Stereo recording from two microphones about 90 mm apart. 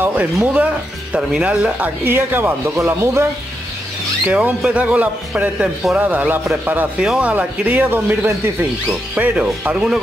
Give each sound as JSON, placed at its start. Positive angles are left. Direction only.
{"t": 0.0, "sound": "speech", "side_deg": -20}
{"t": 4.3, "sound": "speech", "side_deg": -15}